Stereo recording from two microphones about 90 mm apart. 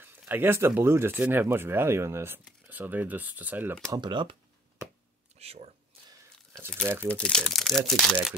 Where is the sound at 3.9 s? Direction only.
55° right (ahead or behind).